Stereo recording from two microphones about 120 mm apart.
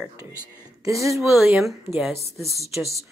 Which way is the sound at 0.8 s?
25° right (ahead or behind).